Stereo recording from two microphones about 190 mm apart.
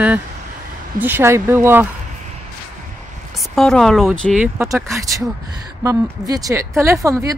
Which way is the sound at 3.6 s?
5° left (ahead or behind).